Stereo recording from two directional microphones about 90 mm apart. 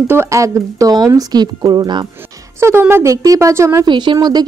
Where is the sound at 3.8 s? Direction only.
60° right (ahead or behind).